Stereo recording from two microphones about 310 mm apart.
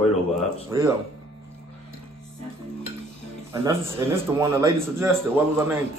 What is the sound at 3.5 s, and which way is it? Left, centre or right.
A man's voice, centre.